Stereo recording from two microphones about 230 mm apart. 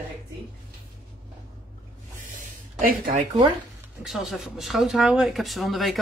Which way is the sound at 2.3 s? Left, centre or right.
Right.